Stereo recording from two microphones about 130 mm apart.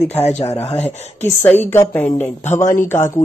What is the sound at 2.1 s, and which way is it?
Speech, 65° left (ahead or behind).